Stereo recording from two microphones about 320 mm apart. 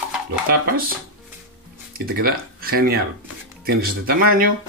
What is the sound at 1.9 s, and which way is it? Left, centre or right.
Speech, right.